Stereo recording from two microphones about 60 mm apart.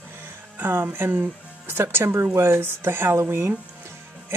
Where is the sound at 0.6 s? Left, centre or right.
Right.